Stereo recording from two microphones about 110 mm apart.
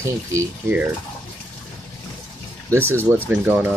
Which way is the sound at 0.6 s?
15° right (ahead or behind).